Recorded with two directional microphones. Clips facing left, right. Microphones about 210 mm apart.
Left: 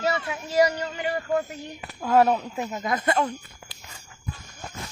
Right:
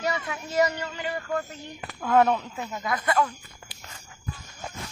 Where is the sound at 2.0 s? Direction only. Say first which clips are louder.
Left 1 dB; 30° left (ahead or behind).